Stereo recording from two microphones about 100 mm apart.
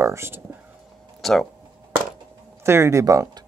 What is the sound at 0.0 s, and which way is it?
Speech, 25° right (ahead or behind).